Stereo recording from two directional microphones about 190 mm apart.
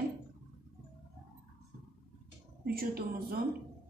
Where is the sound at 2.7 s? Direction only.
50° right (ahead or behind).